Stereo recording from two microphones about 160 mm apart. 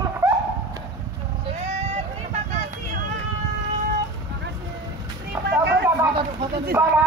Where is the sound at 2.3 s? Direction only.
50° right (ahead or behind).